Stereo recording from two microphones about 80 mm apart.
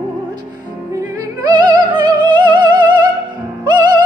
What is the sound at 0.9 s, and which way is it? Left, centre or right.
Music, right.